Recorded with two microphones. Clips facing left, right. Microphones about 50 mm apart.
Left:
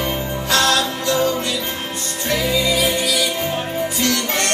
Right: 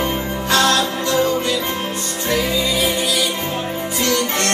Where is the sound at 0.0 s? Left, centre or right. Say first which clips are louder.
Right 1 dB; right.